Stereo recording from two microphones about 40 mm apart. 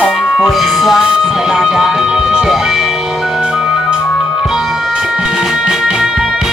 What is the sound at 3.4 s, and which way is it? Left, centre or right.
Music, right.